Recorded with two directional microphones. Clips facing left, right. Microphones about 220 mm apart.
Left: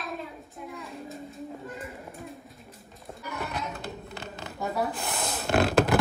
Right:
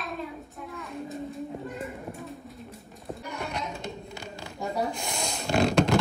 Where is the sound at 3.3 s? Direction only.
5° left (ahead or behind).